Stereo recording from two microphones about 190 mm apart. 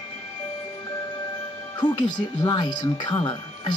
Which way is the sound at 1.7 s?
20° left (ahead or behind).